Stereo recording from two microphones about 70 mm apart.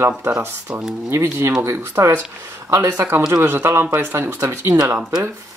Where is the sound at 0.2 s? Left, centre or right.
Right.